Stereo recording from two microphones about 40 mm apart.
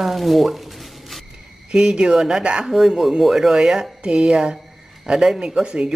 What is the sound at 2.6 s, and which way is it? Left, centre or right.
Speech, centre.